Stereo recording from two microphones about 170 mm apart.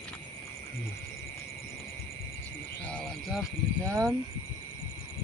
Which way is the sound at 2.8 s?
5° left (ahead or behind).